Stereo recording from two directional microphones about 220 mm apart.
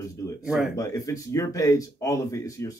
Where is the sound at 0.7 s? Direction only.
15° left (ahead or behind).